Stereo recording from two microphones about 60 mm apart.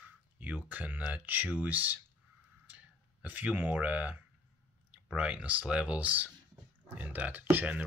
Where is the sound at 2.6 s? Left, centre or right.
Right.